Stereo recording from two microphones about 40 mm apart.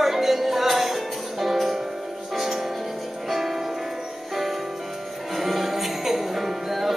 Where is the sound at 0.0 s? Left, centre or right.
Centre.